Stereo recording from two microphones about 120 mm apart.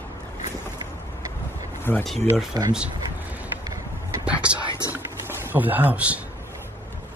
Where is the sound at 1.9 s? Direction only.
20° left (ahead or behind).